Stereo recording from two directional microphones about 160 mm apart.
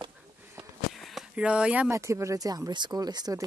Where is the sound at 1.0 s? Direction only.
5° right (ahead or behind).